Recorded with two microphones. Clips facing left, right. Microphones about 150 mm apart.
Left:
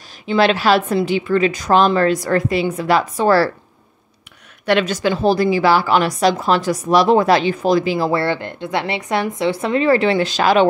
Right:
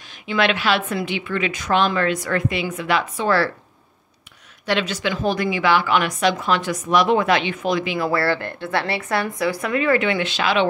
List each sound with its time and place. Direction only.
0.3 s a woman's voice: 35° left (ahead or behind)
4.6 s a woman's voice: 50° left (ahead or behind)
8.1 s a woman's voice: 20° left (ahead or behind); by 10.7 s 40° left (ahead or behind)